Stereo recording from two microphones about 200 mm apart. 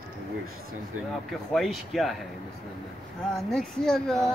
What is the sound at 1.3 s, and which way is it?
Speech, centre (ahead or behind).